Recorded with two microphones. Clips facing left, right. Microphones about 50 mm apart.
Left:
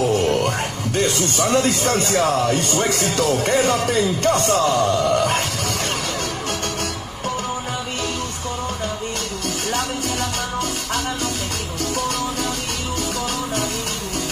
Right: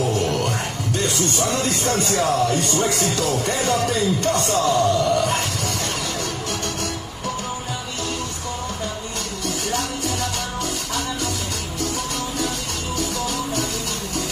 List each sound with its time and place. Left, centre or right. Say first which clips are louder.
0.1 s music: left 3 dB; left
1.3 s speech: left 4 dB; left